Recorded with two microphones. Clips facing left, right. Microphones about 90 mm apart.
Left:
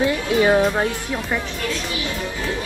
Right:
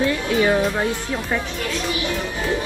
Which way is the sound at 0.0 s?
20° left (ahead or behind).